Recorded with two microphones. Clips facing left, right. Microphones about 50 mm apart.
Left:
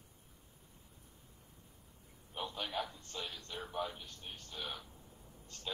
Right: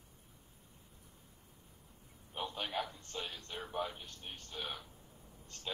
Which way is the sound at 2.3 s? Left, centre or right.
Right.